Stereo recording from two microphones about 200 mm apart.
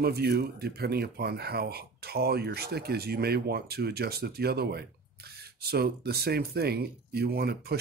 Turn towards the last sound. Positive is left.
turn(degrees=-50)  # may be behind; listen again after turning